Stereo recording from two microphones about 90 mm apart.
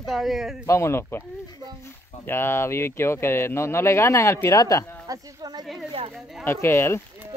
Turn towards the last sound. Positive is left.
turn(degrees=30)  # may be behind; listen again after turning